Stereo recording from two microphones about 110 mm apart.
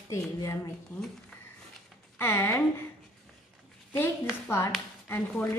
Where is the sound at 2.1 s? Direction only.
25° left (ahead or behind).